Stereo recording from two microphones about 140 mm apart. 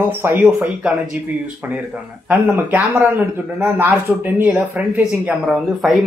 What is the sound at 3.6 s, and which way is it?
Speech, 15° right (ahead or behind).